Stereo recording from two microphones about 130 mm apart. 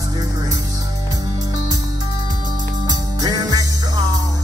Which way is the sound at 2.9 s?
30° right (ahead or behind).